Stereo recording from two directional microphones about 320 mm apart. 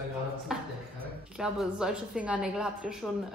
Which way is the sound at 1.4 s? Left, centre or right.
Centre.